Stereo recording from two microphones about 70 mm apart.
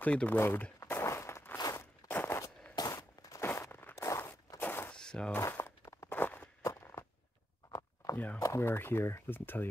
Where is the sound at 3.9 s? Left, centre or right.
Left.